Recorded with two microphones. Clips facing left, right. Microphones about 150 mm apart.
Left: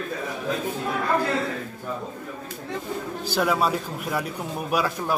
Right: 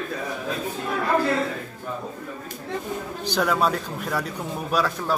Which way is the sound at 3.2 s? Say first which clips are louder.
Right 1 dB; 5° left (ahead or behind).